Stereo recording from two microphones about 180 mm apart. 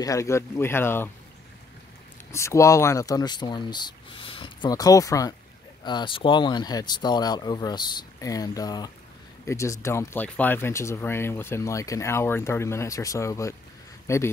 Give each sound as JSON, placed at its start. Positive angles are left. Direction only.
{"t": 0.0, "sound": "speech", "side_deg": 15}
{"t": 2.3, "sound": "speech", "side_deg": 15}